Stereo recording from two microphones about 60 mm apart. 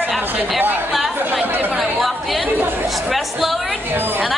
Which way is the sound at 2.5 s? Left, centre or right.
Right.